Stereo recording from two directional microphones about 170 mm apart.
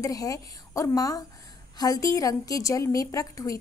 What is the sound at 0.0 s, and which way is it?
A woman's voice, 20° left (ahead or behind).